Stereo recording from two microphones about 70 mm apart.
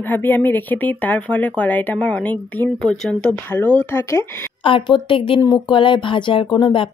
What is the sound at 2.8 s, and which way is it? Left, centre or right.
Speech, centre.